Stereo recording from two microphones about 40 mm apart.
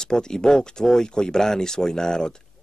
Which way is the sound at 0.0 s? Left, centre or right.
Centre.